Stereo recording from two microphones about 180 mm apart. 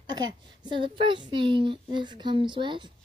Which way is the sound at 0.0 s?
25° right (ahead or behind).